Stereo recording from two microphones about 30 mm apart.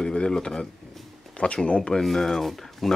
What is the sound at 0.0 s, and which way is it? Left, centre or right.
Speech, left.